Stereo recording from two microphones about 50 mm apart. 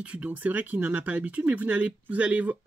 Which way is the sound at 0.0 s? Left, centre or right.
Right.